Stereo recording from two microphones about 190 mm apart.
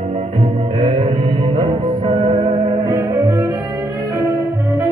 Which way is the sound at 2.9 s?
15° right (ahead or behind).